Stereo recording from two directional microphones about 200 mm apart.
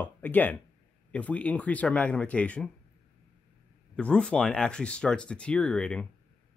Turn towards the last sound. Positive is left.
turn(degrees=5)  # may be behind; listen again after turning